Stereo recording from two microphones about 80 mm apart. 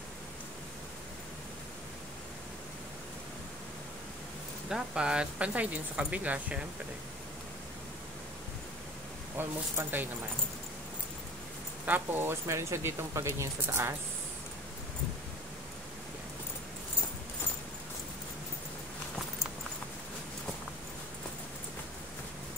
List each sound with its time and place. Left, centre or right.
4.6 s speech: centre
9.4 s speech: right
11.8 s speech: right